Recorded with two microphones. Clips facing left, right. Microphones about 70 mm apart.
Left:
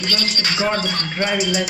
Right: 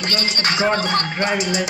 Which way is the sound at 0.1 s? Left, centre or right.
Right.